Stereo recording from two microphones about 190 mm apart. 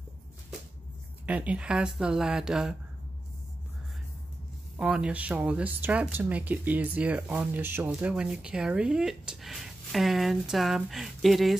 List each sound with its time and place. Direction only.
1.2 s speech: 5° right (ahead or behind)
4.7 s speech: 5° right (ahead or behind)